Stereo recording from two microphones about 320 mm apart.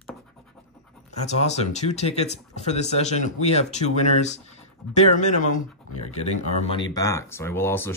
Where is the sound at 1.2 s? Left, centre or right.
Left.